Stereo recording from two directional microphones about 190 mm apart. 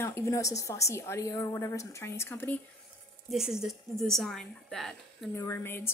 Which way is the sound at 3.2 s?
Centre (ahead or behind).